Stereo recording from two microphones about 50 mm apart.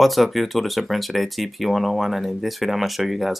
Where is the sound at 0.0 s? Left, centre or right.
Centre.